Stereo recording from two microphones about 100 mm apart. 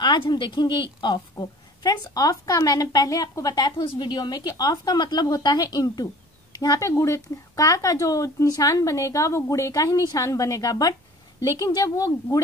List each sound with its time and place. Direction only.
0.0 s a woman's voice: 45° left (ahead or behind)
3.7 s a woman's voice: 55° left (ahead or behind)
6.9 s speech: 30° left (ahead or behind)